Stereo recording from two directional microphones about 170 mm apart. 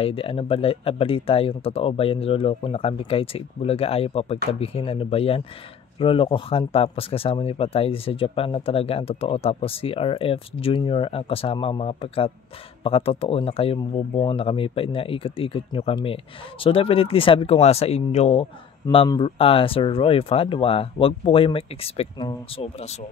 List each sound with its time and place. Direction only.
0.0 s speech: 35° left (ahead or behind)